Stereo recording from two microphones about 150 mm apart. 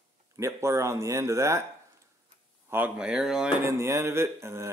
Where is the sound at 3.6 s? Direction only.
15° right (ahead or behind).